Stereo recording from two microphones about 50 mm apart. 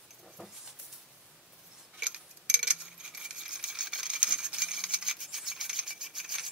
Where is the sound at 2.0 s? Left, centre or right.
Centre.